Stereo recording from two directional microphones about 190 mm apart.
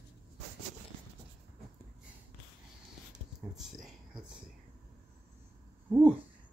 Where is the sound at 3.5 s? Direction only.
Centre (ahead or behind).